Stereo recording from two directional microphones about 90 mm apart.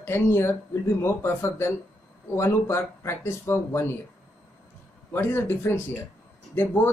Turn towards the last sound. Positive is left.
turn(degrees=25)  # may be behind; listen again after turning